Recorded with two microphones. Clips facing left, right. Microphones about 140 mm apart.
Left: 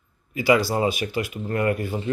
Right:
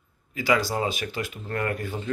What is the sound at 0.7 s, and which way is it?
A man's voice, 15° left (ahead or behind).